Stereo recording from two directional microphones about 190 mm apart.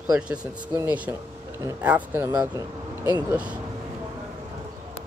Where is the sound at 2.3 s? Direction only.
20° right (ahead or behind).